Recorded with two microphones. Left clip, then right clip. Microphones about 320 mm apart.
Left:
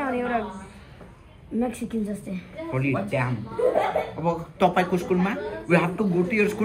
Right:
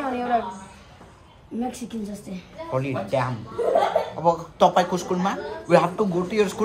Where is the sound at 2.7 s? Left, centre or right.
Centre.